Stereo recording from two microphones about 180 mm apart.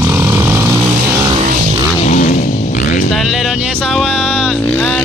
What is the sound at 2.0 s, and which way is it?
Vehicle, 45° left (ahead or behind).